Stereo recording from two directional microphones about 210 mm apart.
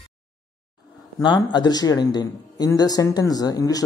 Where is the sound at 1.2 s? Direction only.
20° left (ahead or behind).